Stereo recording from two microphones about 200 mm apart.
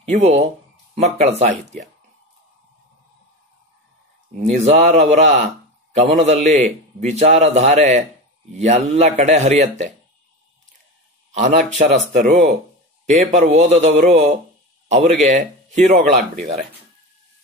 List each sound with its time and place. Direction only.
0.0 s a man's voice: 35° right (ahead or behind)
4.4 s a man's voice: 35° right (ahead or behind)
11.3 s a man's voice: 40° right (ahead or behind)